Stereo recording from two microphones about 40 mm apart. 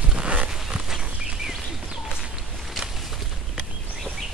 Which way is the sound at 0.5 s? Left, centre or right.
Centre.